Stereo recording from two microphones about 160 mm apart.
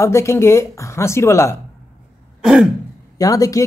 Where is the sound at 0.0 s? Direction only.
20° left (ahead or behind).